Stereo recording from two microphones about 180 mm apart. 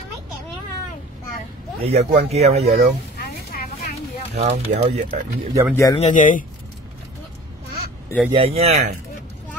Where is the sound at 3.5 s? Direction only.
50° left (ahead or behind).